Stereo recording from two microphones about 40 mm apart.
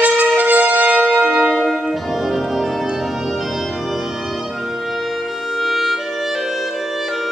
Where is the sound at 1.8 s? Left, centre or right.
Centre.